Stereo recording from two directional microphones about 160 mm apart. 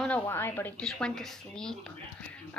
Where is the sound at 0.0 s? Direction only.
10° left (ahead or behind).